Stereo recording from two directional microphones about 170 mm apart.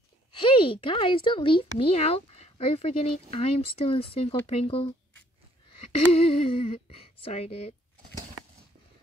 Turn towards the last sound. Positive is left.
turn(degrees=35)  # may be behind; listen again after turning